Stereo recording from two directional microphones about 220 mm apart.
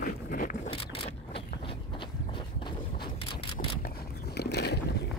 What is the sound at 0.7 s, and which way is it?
Walk, 25° left (ahead or behind).